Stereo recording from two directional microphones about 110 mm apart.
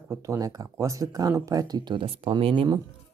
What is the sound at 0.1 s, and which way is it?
Speech, 30° right (ahead or behind).